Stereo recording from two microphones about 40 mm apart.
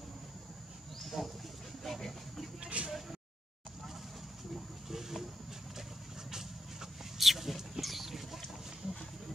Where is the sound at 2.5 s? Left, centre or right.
Right.